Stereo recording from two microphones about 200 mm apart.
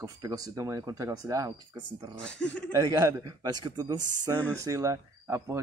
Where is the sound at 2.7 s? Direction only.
15° right (ahead or behind).